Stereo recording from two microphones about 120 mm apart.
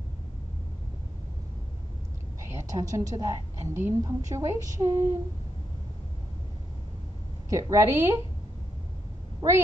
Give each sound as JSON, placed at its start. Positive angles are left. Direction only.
{"t": 2.5, "sound": "a woman's voice", "side_deg": -25}
{"t": 7.4, "sound": "a woman's voice", "side_deg": -25}